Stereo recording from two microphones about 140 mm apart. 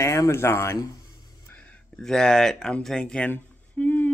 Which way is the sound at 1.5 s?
5° left (ahead or behind).